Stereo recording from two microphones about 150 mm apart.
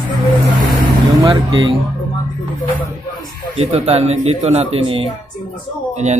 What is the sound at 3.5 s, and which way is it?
A man's voice, 45° right (ahead or behind).